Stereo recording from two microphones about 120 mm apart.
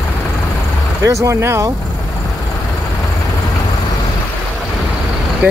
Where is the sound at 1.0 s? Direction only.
25° right (ahead or behind).